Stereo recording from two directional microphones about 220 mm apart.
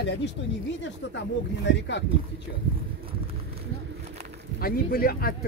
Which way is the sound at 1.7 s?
55° left (ahead or behind).